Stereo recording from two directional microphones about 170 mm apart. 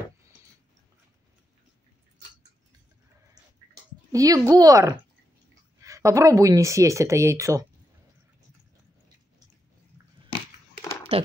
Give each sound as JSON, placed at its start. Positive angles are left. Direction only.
{"t": 4.1, "sound": "speech", "side_deg": -20}
{"t": 11.1, "sound": "speech", "side_deg": -35}